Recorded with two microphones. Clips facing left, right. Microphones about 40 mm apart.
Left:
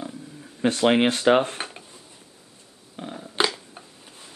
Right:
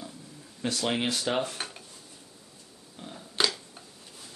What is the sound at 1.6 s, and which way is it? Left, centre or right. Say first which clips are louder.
Dishes: left 4 dB; left.